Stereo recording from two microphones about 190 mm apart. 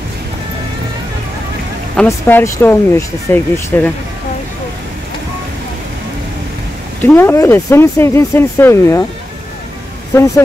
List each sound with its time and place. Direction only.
2.0 s speech: 15° left (ahead or behind)
7.0 s speech: 10° left (ahead or behind)
10.1 s speech: 15° left (ahead or behind)